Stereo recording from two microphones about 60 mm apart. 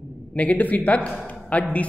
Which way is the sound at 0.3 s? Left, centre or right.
Left.